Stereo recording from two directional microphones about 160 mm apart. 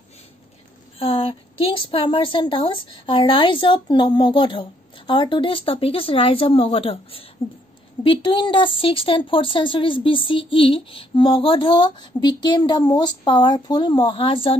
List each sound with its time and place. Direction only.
0.9 s speech: 35° left (ahead or behind)